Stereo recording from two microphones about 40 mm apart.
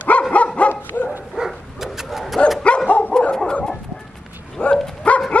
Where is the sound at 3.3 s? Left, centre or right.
Left.